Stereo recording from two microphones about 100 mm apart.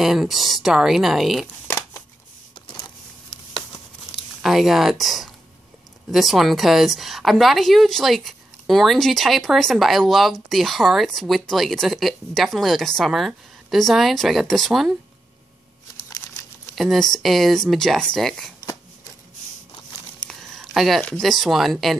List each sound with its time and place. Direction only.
0.0 s speech: 5° right (ahead or behind)
1.7 s a sound: 30° left (ahead or behind)
4.4 s speech: centre (ahead or behind)
16.7 s speech: centre (ahead or behind)
20.2 s a sound: centre (ahead or behind)
21.2 s speech: centre (ahead or behind)